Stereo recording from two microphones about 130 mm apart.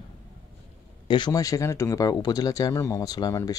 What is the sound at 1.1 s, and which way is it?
Speech, 35° left (ahead or behind).